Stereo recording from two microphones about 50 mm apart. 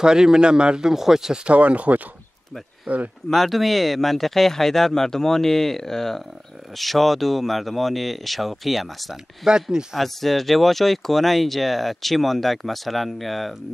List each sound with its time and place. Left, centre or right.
0.0 s speech: centre
1.4 s speech: right
3.3 s speech: centre
9.1 s speech: centre
9.9 s speech: centre